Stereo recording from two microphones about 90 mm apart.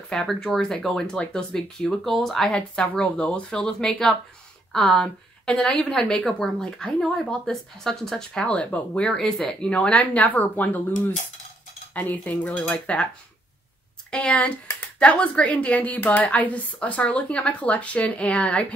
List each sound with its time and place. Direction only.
0.1 s a woman's voice: 5° left (ahead or behind)
14.1 s speech: 15° left (ahead or behind)